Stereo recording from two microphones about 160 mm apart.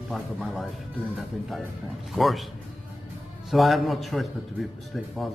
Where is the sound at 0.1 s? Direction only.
Centre (ahead or behind).